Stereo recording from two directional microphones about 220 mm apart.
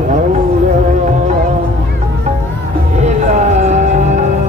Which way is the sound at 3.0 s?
35° right (ahead or behind).